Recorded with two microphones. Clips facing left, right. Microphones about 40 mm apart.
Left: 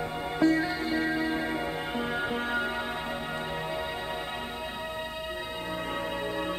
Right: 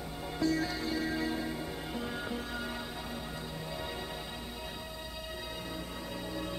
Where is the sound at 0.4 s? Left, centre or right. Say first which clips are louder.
Left 7 dB; left.